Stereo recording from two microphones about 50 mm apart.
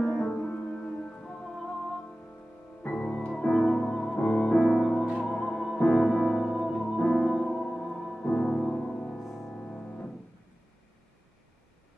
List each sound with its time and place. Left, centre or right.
0.0 s music: centre
0.3 s music: left
1.2 s music: centre
2.9 s music: centre
7.4 s music: centre
7.7 s music: centre
8.2 s music: left
8.5 s music: centre
9.5 s music: left